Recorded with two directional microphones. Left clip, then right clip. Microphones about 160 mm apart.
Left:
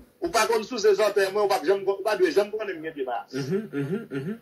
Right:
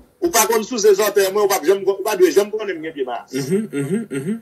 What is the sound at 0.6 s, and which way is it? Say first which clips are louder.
Speech: right 7 dB; centre (ahead or behind).